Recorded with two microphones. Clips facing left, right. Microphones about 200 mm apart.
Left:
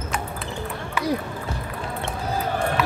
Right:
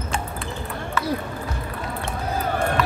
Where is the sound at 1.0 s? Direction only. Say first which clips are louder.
Left 1 dB; 15° left (ahead or behind).